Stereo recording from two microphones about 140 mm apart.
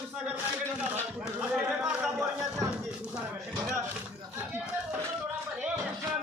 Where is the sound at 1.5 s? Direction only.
5° right (ahead or behind).